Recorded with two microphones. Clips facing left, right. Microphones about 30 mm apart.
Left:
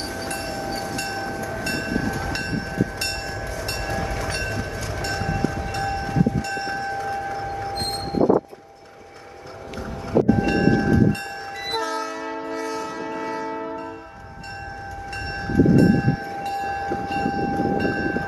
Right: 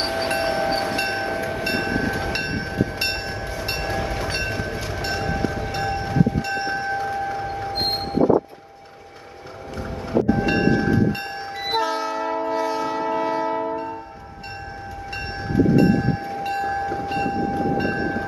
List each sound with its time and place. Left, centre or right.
0.0 s wind chime: right; by 7.1 s centre
7.1 s a sound: centre
7.8 s vehicle: right
10.3 s train: centre
13.6 s train horn: centre
15.5 s train: centre